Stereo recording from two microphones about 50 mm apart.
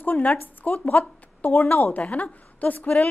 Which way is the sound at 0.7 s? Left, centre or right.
Left.